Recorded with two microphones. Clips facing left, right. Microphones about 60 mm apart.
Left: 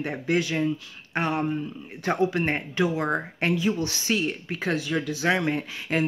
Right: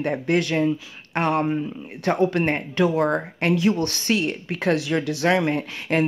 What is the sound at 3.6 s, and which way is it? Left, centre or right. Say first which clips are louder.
Speech: right 7 dB; right.